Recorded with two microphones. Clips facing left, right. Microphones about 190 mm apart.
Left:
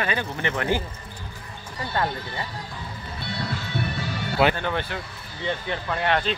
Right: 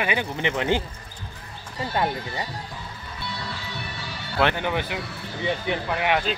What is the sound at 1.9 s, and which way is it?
Speech, 15° right (ahead or behind).